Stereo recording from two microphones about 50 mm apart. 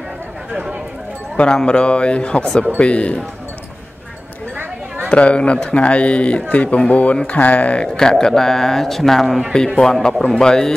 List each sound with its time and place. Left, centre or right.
0.5 s speech: centre
1.3 s a man's voice: left
4.6 s a sound: right
5.1 s a man's voice: left
7.9 s a man's voice: centre